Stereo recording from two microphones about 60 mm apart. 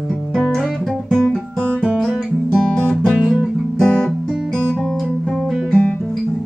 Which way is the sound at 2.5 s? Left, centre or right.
Centre.